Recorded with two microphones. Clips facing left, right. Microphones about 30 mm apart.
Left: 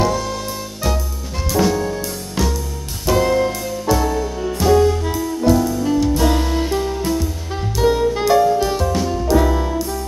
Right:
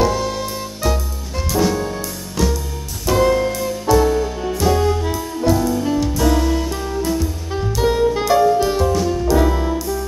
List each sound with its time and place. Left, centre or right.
0.0 s music: centre
3.1 s music: centre
6.3 s music: centre
7.1 s music: centre